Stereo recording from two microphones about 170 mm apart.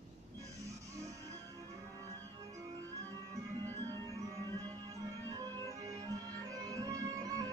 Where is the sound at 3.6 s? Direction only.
20° right (ahead or behind).